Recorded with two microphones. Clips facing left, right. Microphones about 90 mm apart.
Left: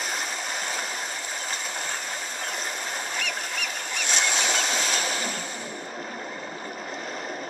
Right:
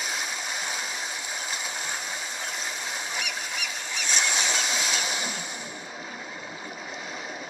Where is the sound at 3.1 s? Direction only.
15° right (ahead or behind).